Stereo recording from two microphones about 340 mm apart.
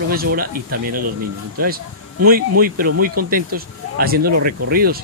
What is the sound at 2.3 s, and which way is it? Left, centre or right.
Speech, right.